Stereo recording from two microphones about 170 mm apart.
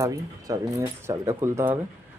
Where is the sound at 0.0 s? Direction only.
20° right (ahead or behind).